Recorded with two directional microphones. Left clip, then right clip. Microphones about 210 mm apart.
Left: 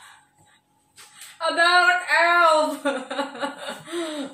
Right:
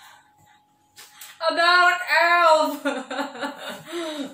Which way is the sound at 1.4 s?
5° left (ahead or behind).